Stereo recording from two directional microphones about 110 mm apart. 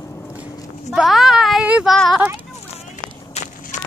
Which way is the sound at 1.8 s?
Centre (ahead or behind).